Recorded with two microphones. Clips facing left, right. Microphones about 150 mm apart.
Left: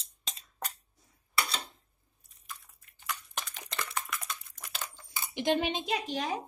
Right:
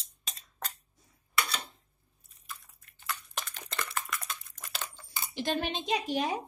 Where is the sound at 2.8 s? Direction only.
Centre (ahead or behind).